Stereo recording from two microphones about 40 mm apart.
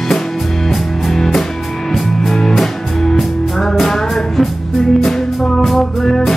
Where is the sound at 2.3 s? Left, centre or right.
Centre.